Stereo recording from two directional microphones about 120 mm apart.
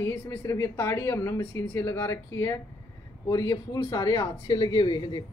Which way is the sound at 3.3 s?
30° left (ahead or behind).